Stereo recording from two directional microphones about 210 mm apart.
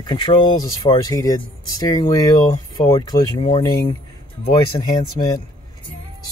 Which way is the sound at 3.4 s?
25° left (ahead or behind).